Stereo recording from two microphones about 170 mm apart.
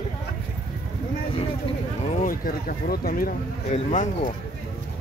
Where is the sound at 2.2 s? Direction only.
55° left (ahead or behind).